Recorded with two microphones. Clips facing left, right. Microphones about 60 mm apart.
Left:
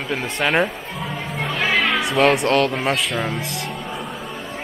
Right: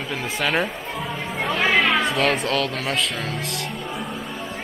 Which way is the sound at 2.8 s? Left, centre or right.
Left.